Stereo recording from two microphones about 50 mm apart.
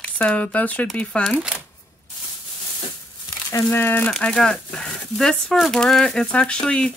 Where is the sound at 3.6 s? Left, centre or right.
Left.